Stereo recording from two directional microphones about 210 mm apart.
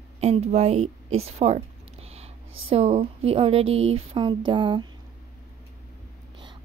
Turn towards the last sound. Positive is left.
turn(degrees=-25)  # may be behind; listen again after turning